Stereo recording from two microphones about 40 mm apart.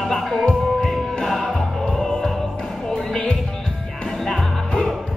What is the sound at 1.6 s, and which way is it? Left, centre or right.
Music, left.